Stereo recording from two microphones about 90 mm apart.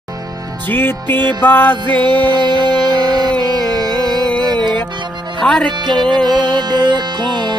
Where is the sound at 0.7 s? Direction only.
25° left (ahead or behind).